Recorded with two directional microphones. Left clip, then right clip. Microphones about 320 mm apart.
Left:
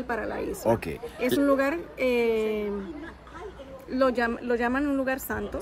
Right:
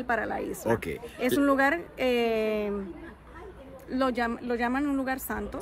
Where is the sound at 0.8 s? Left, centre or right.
Centre.